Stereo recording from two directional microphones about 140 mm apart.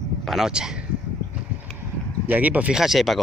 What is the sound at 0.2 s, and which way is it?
Speech, centre (ahead or behind).